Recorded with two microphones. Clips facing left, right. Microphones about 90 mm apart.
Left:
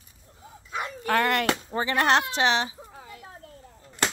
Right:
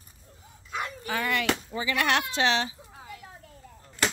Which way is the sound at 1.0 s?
65° left (ahead or behind).